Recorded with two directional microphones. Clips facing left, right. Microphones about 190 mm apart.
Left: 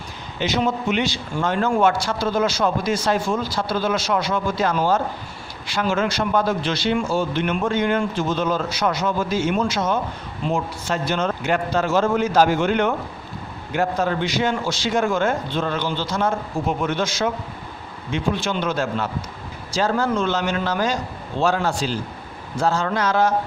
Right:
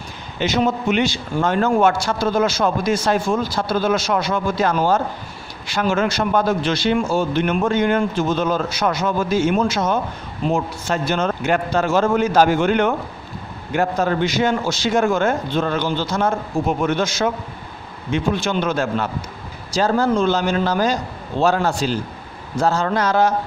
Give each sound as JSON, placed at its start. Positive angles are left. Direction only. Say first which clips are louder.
{"t": 0.4, "sound": "speech", "louder": "right 3 dB", "side_deg": -50}
{"t": 19.7, "sound": "a man's voice", "louder": "right 3 dB", "side_deg": -35}